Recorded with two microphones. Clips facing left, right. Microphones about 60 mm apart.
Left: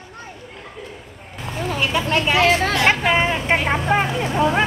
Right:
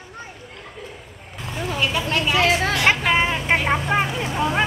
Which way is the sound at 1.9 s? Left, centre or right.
Left.